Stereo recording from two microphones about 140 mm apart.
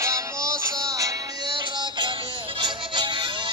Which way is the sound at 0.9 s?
25° right (ahead or behind).